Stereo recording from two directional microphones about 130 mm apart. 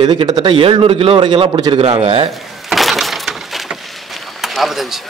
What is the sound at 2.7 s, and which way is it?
Breaking, centre (ahead or behind).